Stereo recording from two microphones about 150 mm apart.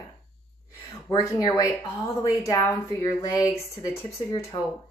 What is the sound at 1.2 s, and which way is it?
A woman's voice, 25° left (ahead or behind).